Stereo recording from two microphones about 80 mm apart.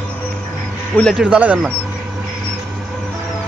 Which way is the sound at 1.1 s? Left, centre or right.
Centre.